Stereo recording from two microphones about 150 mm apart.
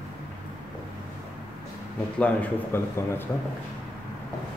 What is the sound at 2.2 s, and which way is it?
Speech, 10° left (ahead or behind).